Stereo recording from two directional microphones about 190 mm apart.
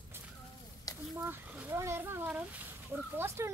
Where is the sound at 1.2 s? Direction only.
10° right (ahead or behind).